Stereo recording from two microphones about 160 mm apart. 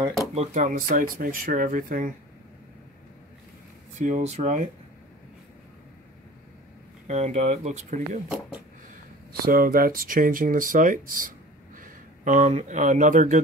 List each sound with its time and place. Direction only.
0.3 s speech: 40° right (ahead or behind)
0.7 s speech: 55° right (ahead or behind)
4.0 s speech: 45° right (ahead or behind)
7.1 s speech: 45° right (ahead or behind)
9.4 s speech: 65° right (ahead or behind)